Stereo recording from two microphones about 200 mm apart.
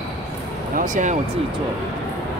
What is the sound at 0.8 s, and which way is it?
Speech, 40° right (ahead or behind).